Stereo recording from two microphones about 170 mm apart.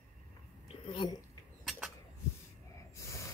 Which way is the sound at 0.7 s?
30° left (ahead or behind).